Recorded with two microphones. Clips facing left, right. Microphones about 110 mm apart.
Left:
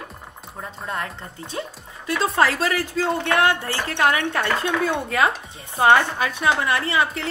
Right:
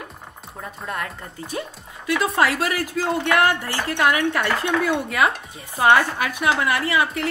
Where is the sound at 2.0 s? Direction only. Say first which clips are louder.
Even; 30° left (ahead or behind).